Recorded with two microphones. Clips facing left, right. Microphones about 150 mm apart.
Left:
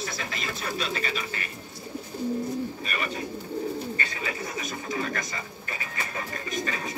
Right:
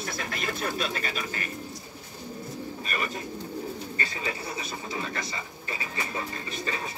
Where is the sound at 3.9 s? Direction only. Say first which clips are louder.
Even; 35° right (ahead or behind).